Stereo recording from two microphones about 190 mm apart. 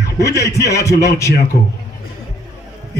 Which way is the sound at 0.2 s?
15° left (ahead or behind).